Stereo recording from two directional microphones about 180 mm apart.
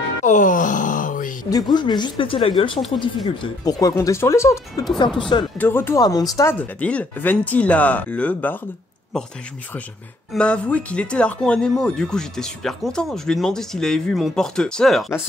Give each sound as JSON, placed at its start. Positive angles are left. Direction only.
{"t": 0.2, "sound": "groan", "side_deg": 45}
{"t": 1.5, "sound": "speech", "side_deg": 25}
{"t": 4.9, "sound": "speech", "side_deg": 25}
{"t": 5.6, "sound": "speech", "side_deg": 10}
{"t": 10.3, "sound": "speech", "side_deg": 5}